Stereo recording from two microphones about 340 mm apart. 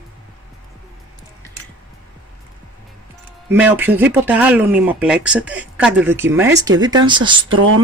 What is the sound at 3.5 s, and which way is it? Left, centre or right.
Speech, centre.